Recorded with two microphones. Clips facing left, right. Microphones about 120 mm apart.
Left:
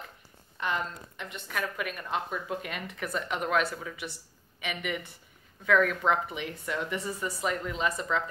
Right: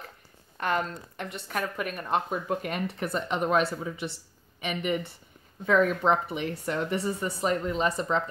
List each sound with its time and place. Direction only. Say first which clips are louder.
0.6 s speech: right 4 dB; 50° right (ahead or behind)
1.3 s speech: right 2 dB; 35° right (ahead or behind)
2.9 s speech: right 3 dB; 30° right (ahead or behind)
7.1 s speech: right 4 dB; 25° right (ahead or behind)